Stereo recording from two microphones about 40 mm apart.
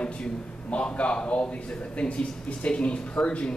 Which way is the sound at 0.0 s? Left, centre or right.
Left.